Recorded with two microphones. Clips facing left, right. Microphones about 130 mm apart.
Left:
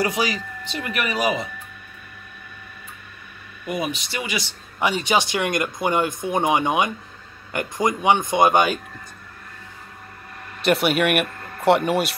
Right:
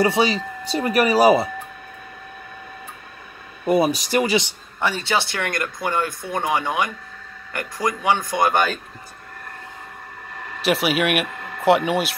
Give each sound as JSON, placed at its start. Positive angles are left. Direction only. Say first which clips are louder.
{"t": 0.0, "sound": "speech", "louder": "right 4 dB", "side_deg": -25}
{"t": 3.6, "sound": "speech", "louder": "right 8 dB", "side_deg": -35}
{"t": 4.7, "sound": "speech", "louder": "left 2 dB", "side_deg": 15}
{"t": 10.6, "sound": "speech", "louder": "left 1 dB", "side_deg": 0}